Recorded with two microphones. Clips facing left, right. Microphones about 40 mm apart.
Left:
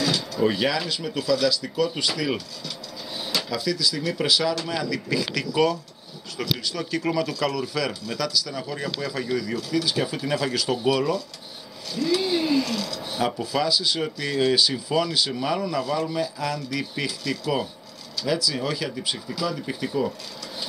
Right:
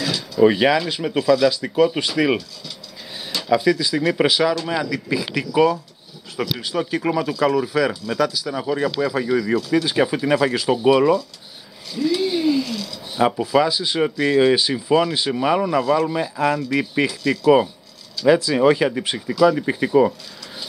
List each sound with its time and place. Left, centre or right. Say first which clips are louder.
0.4 s speech: right 9 dB; right
3.4 s speech: right 12 dB; right
9.3 s speech: right 5 dB; right
11.9 s speech: right 3 dB; centre
13.4 s speech: right 6 dB; right